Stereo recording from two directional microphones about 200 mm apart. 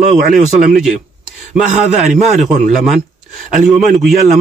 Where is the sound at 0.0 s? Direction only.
35° right (ahead or behind).